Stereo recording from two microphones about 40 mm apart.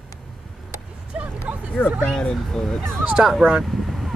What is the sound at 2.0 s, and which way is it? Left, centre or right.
Speech, centre.